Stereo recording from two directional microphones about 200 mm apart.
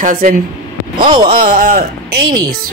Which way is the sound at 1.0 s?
25° right (ahead or behind).